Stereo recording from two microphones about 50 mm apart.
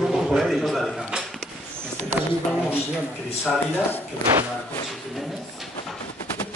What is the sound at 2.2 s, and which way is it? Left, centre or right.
Speech, right.